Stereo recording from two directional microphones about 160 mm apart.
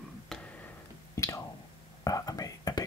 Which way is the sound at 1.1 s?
20° left (ahead or behind).